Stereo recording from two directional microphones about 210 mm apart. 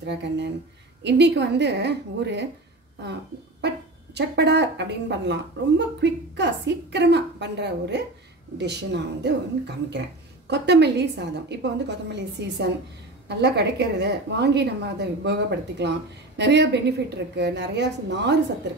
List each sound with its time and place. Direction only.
0.0 s speech: 55° right (ahead or behind)
3.6 s speech: 55° right (ahead or behind)
10.5 s a woman's voice: 55° right (ahead or behind)